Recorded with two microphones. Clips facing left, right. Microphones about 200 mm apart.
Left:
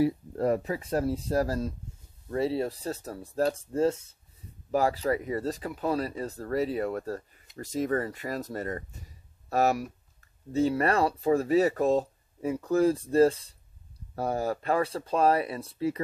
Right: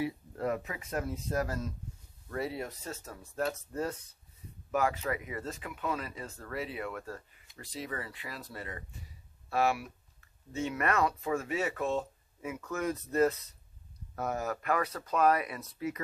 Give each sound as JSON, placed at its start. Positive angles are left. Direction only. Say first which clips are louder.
{"t": 0.0, "sound": "speech", "louder": "left 8 dB", "side_deg": 35}